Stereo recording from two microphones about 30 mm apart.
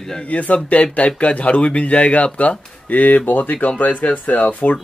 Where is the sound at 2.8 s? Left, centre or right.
Left.